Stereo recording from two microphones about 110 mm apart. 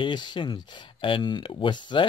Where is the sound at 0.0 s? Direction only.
45° left (ahead or behind).